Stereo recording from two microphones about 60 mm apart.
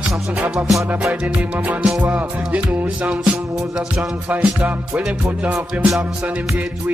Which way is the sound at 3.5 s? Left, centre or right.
Centre.